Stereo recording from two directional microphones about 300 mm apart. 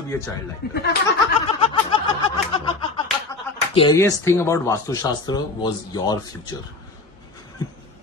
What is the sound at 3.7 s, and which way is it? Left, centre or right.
Speech, centre.